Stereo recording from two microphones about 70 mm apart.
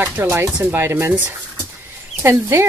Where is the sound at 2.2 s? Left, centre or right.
Right.